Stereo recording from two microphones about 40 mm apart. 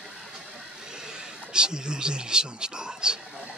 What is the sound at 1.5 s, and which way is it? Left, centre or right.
Speech, right.